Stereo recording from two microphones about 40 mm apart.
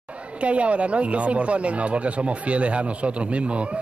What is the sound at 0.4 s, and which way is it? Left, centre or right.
Speech, right.